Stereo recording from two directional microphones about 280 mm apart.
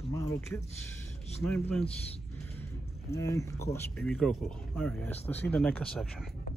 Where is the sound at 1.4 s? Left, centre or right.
Centre.